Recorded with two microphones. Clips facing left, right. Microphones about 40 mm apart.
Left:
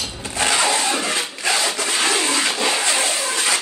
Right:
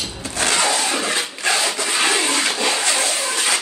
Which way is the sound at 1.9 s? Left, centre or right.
Right.